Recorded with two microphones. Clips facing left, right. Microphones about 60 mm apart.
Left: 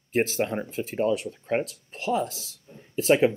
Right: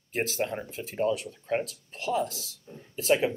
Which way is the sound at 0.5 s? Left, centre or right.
Left.